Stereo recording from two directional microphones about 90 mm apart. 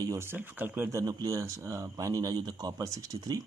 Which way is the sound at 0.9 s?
45° right (ahead or behind).